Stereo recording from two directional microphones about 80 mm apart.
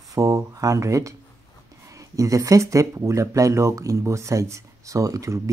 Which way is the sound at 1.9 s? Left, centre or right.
Right.